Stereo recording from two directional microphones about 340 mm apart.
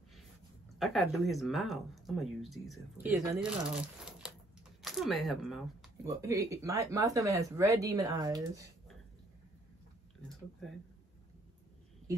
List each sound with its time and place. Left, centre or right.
0.7 s speech: centre
10.6 s speech: centre